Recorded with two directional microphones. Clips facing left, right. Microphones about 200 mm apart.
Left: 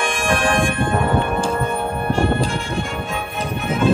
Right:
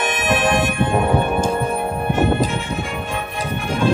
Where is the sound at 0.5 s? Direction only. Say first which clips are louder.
Right 1 dB; 5° right (ahead or behind).